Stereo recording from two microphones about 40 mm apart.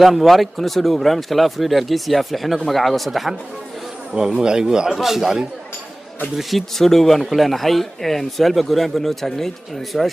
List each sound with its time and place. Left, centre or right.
0.0 s speech: centre
4.1 s a man's voice: centre
4.9 s a man's voice: centre
6.3 s speech: centre